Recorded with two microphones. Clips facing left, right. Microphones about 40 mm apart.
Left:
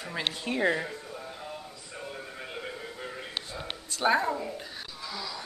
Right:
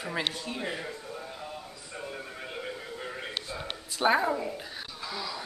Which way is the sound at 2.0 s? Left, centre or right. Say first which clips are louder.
Right 1 dB; centre.